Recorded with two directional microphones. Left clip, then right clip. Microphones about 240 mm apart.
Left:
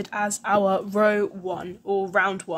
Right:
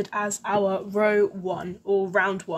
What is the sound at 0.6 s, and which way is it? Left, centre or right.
Speech, left.